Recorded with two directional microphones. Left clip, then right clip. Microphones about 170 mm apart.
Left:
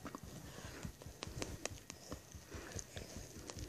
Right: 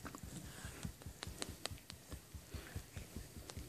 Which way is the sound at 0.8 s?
30° left (ahead or behind).